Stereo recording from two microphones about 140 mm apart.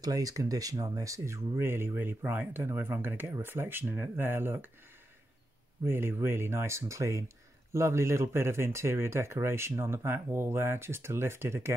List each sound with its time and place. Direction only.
0.0 s speech: 25° right (ahead or behind)
5.9 s speech: 15° right (ahead or behind)